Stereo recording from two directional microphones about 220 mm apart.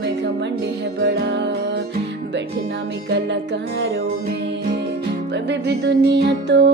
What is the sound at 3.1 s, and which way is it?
Music, 50° right (ahead or behind).